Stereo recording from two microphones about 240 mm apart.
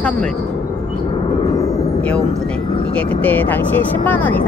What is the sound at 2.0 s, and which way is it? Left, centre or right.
A woman's voice, centre.